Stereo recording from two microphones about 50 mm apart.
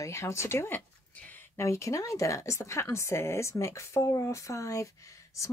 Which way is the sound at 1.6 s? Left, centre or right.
Left.